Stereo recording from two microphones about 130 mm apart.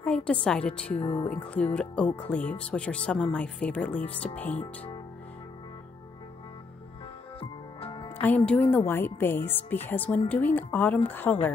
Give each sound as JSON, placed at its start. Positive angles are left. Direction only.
{"t": 0.0, "sound": "speech", "side_deg": 10}
{"t": 7.3, "sound": "music", "side_deg": 40}
{"t": 8.4, "sound": "speech", "side_deg": 10}